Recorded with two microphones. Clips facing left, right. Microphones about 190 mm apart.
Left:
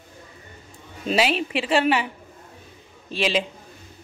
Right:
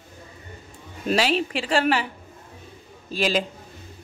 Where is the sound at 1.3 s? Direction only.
35° right (ahead or behind).